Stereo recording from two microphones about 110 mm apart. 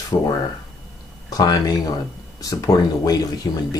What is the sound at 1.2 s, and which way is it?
Speech, 35° left (ahead or behind).